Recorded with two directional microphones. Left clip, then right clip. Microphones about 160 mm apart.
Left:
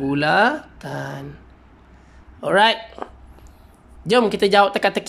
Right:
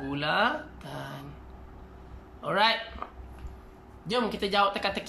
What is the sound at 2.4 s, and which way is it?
Speech, 50° left (ahead or behind).